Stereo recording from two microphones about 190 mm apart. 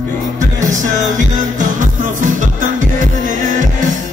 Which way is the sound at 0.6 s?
40° right (ahead or behind).